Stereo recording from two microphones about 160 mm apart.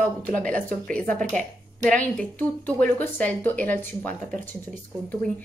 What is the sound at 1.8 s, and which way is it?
Speech, 5° left (ahead or behind).